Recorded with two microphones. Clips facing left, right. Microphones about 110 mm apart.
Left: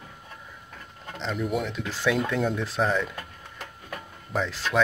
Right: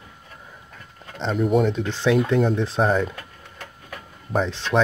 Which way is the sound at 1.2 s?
35° right (ahead or behind).